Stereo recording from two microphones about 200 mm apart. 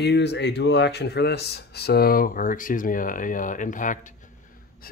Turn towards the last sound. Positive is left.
turn(degrees=40)  # may be behind; listen again after turning